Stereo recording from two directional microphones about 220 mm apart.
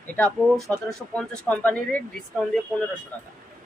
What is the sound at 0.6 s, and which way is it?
Speech, 15° right (ahead or behind).